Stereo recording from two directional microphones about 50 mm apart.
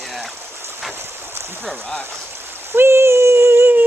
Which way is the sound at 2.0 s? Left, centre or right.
Right.